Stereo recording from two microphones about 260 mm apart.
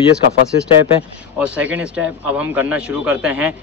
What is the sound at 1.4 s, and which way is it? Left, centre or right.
Speech, centre.